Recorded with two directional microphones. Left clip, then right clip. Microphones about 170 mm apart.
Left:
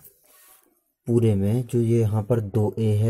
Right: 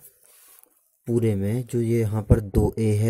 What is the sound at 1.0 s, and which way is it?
Speech, 30° right (ahead or behind).